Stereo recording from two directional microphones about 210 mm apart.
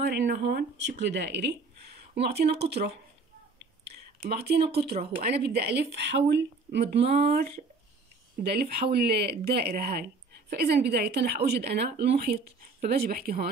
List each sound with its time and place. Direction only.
0.0 s a woman's voice: 55° right (ahead or behind)
3.8 s a sound: 50° right (ahead or behind)
5.1 s a woman's voice: 50° right (ahead or behind)